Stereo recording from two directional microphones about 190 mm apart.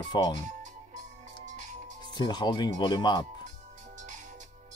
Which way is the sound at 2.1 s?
25° left (ahead or behind).